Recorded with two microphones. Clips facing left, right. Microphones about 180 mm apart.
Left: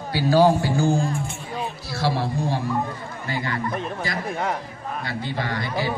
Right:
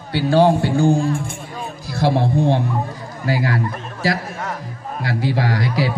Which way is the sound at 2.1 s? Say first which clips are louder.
Right 8 dB; 60° right (ahead or behind).